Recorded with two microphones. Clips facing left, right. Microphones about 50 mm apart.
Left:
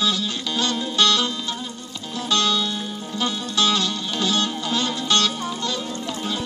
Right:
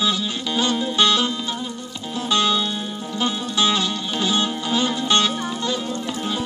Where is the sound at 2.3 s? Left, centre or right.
Centre.